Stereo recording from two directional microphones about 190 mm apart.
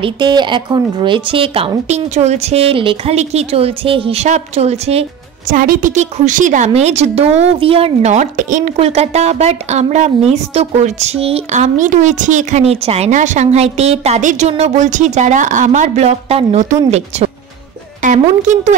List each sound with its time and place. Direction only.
0.0 s speech: 25° right (ahead or behind)
5.5 s a woman's voice: 45° right (ahead or behind)
18.0 s a woman's voice: 40° right (ahead or behind)